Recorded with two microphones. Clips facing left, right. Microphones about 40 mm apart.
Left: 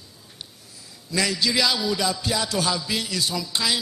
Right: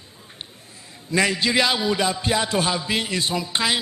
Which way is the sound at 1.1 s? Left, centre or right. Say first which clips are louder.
Right 3 dB; right.